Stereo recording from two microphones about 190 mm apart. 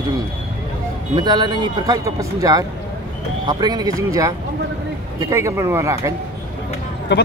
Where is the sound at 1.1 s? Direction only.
20° right (ahead or behind).